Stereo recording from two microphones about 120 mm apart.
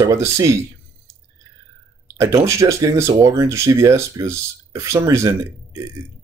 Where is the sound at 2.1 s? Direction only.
25° right (ahead or behind).